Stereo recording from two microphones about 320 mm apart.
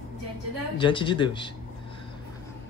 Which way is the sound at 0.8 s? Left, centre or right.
Centre.